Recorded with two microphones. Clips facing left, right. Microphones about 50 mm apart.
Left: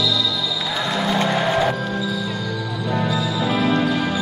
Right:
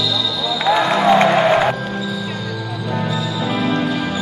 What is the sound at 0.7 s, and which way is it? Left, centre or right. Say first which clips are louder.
Music: right 10 dB; right.